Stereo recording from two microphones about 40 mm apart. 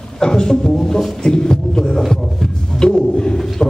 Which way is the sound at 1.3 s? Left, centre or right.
Centre.